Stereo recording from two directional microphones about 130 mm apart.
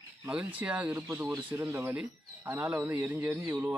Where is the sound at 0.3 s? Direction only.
10° right (ahead or behind).